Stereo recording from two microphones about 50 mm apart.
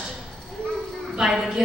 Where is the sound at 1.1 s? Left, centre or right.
Centre.